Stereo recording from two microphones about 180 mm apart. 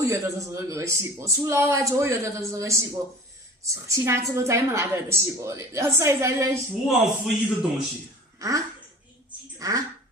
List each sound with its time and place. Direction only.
0.0 s speech: 15° right (ahead or behind)
6.9 s a man's voice: centre (ahead or behind)
8.4 s a sound: 20° right (ahead or behind)
9.6 s speech: 20° right (ahead or behind)